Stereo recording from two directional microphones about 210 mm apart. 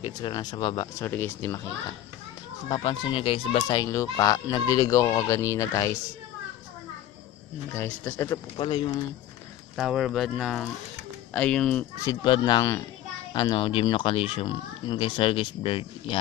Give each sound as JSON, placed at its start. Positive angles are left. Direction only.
{"t": 0.0, "sound": "speech", "side_deg": 20}
{"t": 2.7, "sound": "speech", "side_deg": 20}
{"t": 7.7, "sound": "speech", "side_deg": 10}
{"t": 8.5, "sound": "speech", "side_deg": 25}
{"t": 9.8, "sound": "speech", "side_deg": 0}
{"t": 12.0, "sound": "speech", "side_deg": 20}